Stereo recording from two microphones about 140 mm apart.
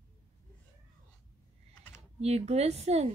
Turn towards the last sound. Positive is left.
turn(degrees=-50)  # may be behind; listen again after turning